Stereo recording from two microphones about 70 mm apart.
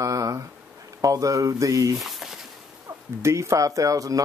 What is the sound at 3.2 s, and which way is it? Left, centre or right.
Speech, right.